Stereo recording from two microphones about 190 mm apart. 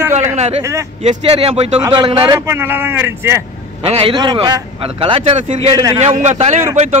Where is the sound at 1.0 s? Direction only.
30° right (ahead or behind).